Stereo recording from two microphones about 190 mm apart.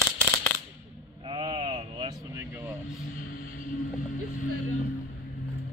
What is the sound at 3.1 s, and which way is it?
Vehicle, 50° left (ahead or behind).